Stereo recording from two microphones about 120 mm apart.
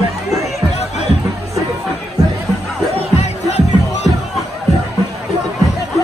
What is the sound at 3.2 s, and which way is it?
Music, 65° left (ahead or behind).